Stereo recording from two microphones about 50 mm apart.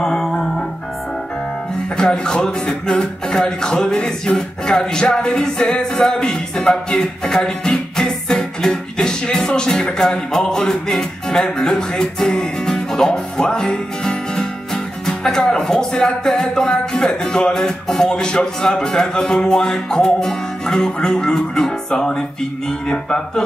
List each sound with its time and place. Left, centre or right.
0.0 s music: centre
2.0 s speech: centre
4.3 s music: centre
17.4 s speech: centre